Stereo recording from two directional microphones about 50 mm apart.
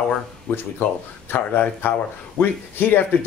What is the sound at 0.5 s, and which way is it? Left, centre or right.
Speech, left.